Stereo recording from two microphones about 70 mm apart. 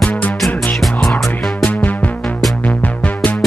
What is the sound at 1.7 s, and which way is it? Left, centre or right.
Music, left.